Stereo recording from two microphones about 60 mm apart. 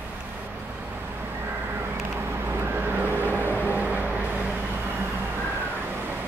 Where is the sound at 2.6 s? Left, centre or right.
Right.